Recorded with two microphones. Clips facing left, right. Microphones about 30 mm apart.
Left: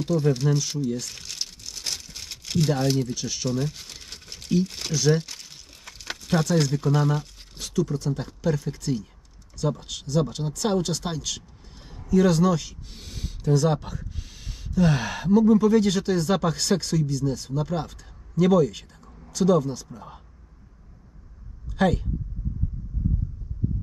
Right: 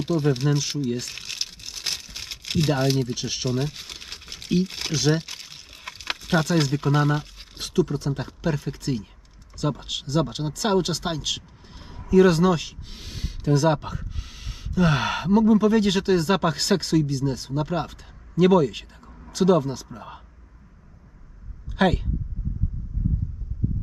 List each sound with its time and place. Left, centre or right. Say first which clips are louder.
0.0 s speech: even; right
0.8 s crumpling: right 1 dB; right
9.6 s speech: right 1 dB; right
13.5 s speech: right 2 dB; right
21.7 s speech: right 1 dB; right